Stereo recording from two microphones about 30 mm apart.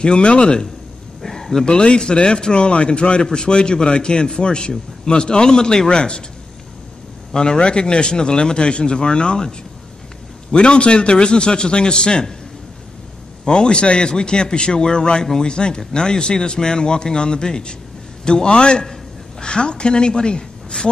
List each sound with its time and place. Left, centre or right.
0.0 s a man's voice: left
1.2 s speech: centre
1.7 s a man's voice: left
3.2 s a man's voice: left
7.3 s a man's voice: left
10.5 s a man's voice: left
13.5 s a man's voice: left